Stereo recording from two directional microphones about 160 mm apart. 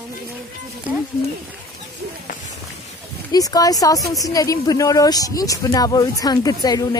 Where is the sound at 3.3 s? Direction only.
25° left (ahead or behind).